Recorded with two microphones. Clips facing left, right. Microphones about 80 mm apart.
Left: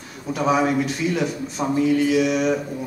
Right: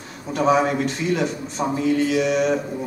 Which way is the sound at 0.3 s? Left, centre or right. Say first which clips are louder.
Right 1 dB; centre.